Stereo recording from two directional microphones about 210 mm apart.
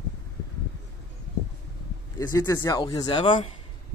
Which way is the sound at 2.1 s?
15° left (ahead or behind).